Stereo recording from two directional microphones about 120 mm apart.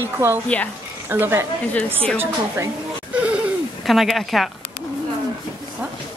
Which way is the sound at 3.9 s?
Centre (ahead or behind).